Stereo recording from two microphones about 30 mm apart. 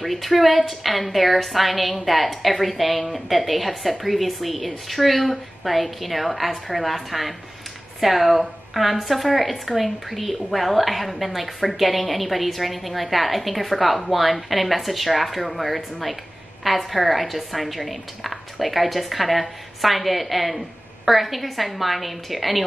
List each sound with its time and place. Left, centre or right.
0.0 s a woman's voice: centre